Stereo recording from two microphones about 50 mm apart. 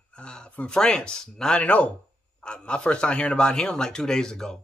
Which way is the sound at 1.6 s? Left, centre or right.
Left.